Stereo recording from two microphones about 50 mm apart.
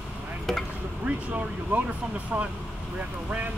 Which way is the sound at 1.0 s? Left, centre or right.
Right.